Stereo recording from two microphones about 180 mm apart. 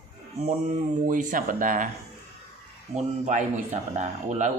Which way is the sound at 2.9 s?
40° right (ahead or behind).